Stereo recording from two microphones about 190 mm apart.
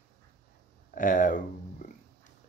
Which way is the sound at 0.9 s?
45° left (ahead or behind).